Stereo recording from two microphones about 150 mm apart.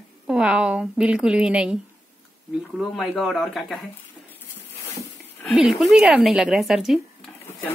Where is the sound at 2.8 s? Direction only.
Centre (ahead or behind).